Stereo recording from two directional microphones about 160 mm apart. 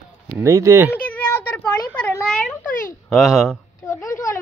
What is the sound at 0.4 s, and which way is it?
Speech, 20° right (ahead or behind).